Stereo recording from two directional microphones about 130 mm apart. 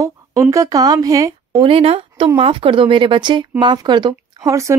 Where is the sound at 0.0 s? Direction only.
25° right (ahead or behind).